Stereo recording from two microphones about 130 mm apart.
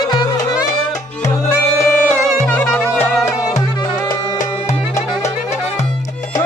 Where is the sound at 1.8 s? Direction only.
15° left (ahead or behind).